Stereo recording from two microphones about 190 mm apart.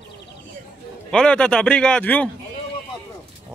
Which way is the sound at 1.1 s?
5° left (ahead or behind).